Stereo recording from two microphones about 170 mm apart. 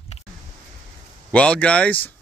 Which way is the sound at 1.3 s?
5° left (ahead or behind).